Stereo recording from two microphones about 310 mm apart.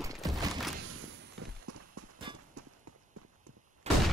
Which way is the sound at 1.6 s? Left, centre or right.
Right.